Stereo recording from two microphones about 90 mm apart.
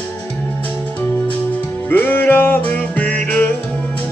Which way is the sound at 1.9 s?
25° left (ahead or behind).